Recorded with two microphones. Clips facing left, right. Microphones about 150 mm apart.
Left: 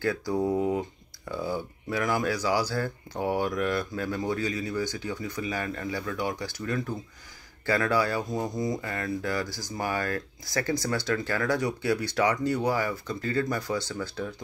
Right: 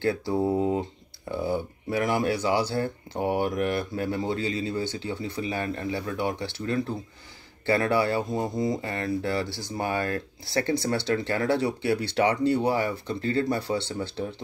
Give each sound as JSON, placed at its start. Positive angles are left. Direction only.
{"t": 0.0, "sound": "speech", "side_deg": -30}